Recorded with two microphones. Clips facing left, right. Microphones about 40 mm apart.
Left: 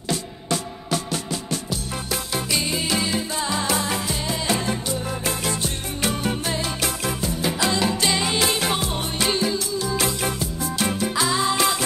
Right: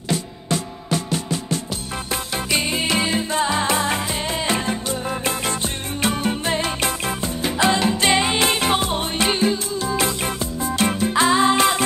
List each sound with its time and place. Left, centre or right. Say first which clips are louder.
1.7 s music: right 1 dB; right
5.2 s music: right 2 dB; right